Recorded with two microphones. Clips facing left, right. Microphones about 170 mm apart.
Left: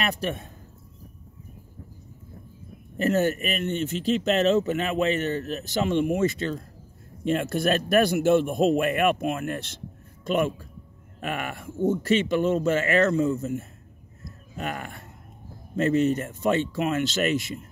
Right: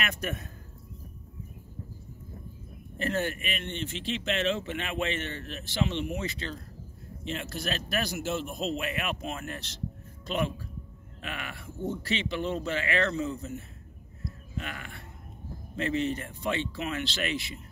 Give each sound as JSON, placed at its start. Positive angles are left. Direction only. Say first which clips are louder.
{"t": 0.0, "sound": "a man's voice", "louder": "left 6 dB", "side_deg": 30}
{"t": 3.0, "sound": "speech", "louder": "left 8 dB", "side_deg": 45}
{"t": 14.2, "sound": "a sound", "louder": "left 5 dB", "side_deg": 45}
{"t": 15.7, "sound": "speech", "louder": "left 8 dB", "side_deg": 45}